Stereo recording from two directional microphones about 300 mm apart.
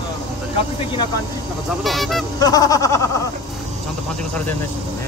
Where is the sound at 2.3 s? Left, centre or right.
Centre.